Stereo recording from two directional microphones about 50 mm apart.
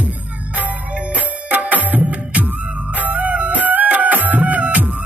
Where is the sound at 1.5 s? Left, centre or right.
Right.